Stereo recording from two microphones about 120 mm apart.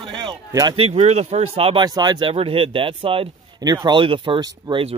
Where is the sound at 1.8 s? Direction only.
35° right (ahead or behind).